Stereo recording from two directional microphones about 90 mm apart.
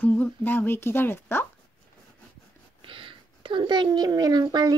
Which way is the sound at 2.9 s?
75° right (ahead or behind).